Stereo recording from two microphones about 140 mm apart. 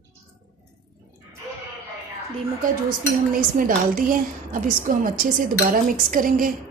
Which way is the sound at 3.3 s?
75° right (ahead or behind).